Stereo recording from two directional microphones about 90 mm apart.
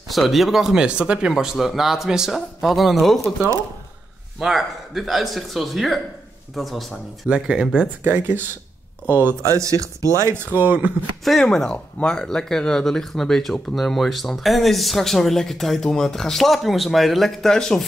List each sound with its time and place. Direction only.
0.1 s speech: centre (ahead or behind)
4.4 s speech: 5° right (ahead or behind)
8.0 s speech: 25° right (ahead or behind)
9.4 s speech: 35° right (ahead or behind)
10.3 s speech: 20° right (ahead or behind)
11.2 s speech: 5° left (ahead or behind)